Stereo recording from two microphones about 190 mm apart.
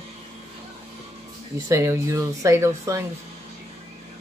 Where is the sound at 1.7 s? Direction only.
15° right (ahead or behind).